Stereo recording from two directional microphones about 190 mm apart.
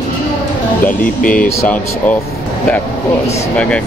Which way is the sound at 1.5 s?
10° left (ahead or behind).